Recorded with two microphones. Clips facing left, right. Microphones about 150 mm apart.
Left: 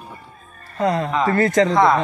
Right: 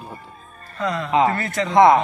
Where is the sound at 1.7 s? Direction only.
20° right (ahead or behind).